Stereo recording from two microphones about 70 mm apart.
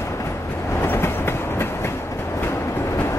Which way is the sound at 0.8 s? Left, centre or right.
Left.